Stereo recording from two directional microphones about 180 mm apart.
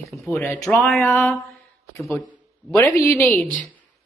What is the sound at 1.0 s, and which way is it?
Speech, 15° left (ahead or behind).